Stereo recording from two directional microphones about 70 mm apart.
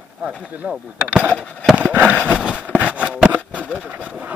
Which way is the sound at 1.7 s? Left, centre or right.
Right.